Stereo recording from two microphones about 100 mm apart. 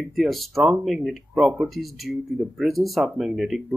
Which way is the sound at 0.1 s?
Centre (ahead or behind).